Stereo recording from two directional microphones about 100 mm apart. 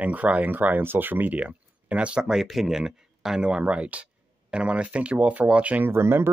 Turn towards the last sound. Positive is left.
turn(degrees=-25)  # may be behind; listen again after turning